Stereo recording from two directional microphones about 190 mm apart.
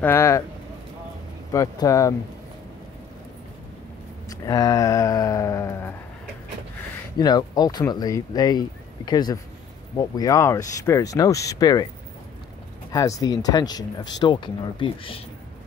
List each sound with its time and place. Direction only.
0.0 s speech: 15° left (ahead or behind)
1.5 s speech: 15° left (ahead or behind)
4.3 s speech: 20° left (ahead or behind)
7.2 s speech: 20° left (ahead or behind)
12.9 s speech: 20° left (ahead or behind)